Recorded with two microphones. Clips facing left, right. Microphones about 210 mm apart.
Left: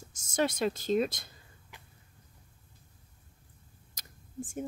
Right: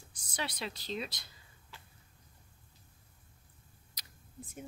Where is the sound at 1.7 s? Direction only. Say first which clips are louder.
Left 1 dB; 15° left (ahead or behind).